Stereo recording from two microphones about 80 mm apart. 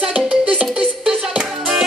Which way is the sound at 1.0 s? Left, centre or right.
Centre.